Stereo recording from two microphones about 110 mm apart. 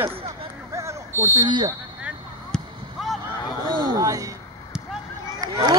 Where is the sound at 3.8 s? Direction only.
35° right (ahead or behind).